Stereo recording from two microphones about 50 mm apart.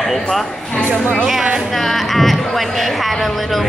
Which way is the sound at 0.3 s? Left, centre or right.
Centre.